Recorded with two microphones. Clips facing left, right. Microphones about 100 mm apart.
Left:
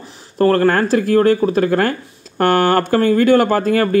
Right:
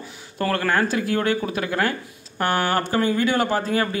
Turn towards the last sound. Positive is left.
turn(degrees=50)  # may be behind; listen again after turning